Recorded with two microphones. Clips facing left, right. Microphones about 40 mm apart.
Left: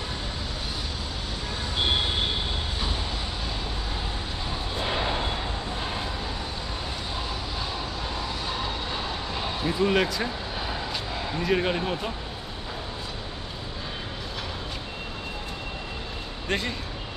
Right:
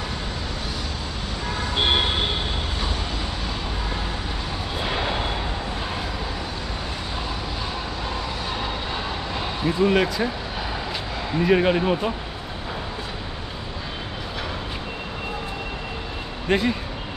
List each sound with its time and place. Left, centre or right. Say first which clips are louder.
1.8 s vehicle: right 4 dB; right
9.7 s speech: right 4 dB; centre
11.4 s speech: right 7 dB; centre
16.4 s speech: right 7 dB; centre